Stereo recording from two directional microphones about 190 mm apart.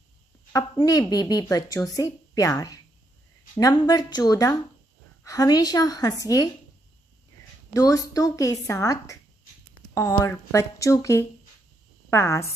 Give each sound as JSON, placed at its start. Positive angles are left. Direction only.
{"t": 0.8, "sound": "speech", "side_deg": 20}
{"t": 7.7, "sound": "a woman's voice", "side_deg": 20}